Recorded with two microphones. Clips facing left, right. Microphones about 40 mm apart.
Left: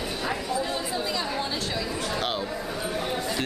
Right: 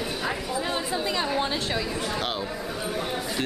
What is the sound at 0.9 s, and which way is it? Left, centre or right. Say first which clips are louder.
Speech: right 2 dB; centre.